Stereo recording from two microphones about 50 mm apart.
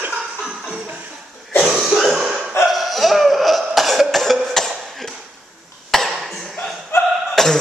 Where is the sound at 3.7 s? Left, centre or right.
Centre.